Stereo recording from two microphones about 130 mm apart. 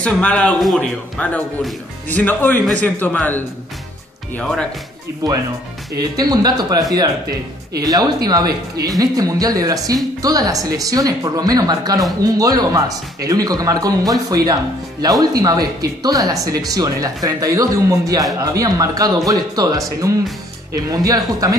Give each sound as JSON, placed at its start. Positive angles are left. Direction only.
{"t": 0.0, "sound": "speech", "side_deg": 10}
{"t": 5.9, "sound": "speech", "side_deg": -30}
{"t": 7.8, "sound": "speech", "side_deg": -30}